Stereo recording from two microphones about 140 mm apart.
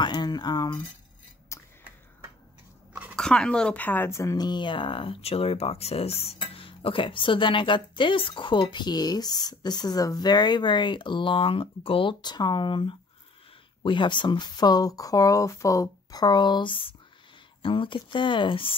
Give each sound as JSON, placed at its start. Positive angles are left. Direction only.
{"t": 0.0, "sound": "speech", "side_deg": 30}
{"t": 1.5, "sound": "a sound", "side_deg": 20}
{"t": 3.2, "sound": "speech", "side_deg": 5}